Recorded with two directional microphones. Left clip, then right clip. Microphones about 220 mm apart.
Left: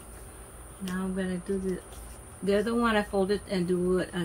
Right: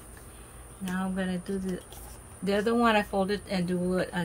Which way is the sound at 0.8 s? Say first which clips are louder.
Right 1 dB; 50° right (ahead or behind).